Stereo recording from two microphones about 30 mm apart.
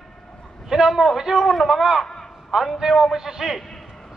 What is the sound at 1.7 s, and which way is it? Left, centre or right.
A man's voice, centre.